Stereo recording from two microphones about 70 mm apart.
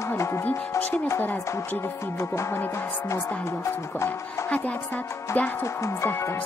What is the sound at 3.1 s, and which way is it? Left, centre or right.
Speech, left.